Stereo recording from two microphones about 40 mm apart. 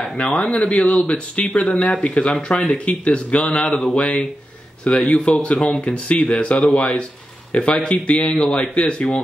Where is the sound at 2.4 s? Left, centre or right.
Left.